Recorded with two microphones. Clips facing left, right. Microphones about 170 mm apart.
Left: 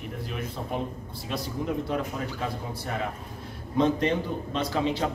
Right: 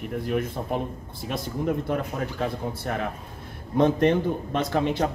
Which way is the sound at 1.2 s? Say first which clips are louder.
Right 4 dB; 55° right (ahead or behind).